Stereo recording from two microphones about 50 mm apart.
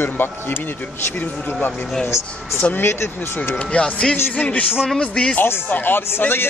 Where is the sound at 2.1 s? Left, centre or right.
Left.